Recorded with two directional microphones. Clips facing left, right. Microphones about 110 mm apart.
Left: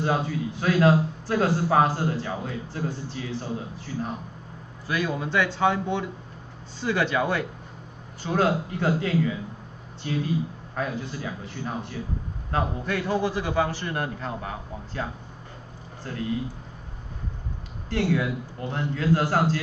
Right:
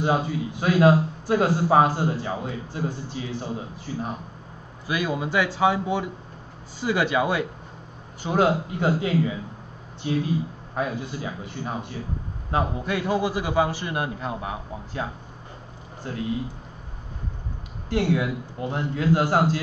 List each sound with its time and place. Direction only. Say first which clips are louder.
0.0 s a man's voice: right 2 dB; 15° right (ahead or behind)
10.7 s a man's voice: right 3 dB; 15° right (ahead or behind)
16.1 s a man's voice: right 2 dB; 15° right (ahead or behind)
17.8 s a man's voice: right 2 dB; 15° right (ahead or behind)